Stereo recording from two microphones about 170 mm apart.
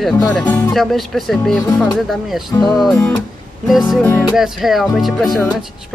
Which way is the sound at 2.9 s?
20° left (ahead or behind).